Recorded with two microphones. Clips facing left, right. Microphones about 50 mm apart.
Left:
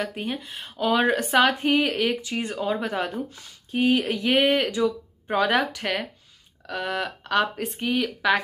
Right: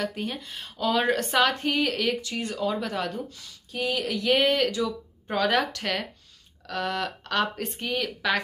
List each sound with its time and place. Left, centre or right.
0.0 s speech: centre